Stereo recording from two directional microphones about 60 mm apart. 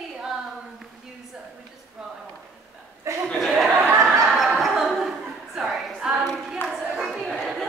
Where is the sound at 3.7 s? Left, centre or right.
Right.